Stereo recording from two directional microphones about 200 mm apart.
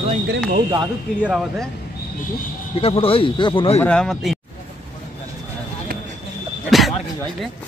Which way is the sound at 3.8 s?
5° left (ahead or behind).